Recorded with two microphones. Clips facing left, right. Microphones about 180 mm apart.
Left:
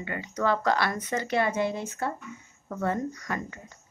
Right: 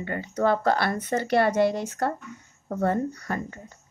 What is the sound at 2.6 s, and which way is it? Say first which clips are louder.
Speech: right 4 dB; 35° right (ahead or behind).